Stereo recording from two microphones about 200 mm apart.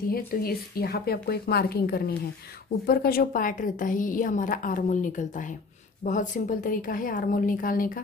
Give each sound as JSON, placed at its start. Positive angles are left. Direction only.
{"t": 0.1, "sound": "a woman's voice", "side_deg": 50}